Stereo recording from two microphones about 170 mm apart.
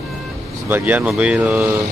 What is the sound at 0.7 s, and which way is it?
Speech, 10° right (ahead or behind).